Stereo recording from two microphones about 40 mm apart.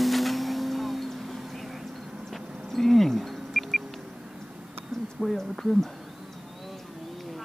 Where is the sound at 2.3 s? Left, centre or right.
Centre.